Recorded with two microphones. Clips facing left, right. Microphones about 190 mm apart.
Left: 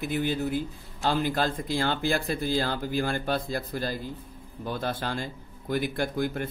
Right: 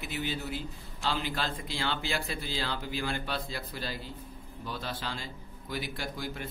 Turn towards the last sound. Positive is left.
turn(degrees=55)  # may be behind; listen again after turning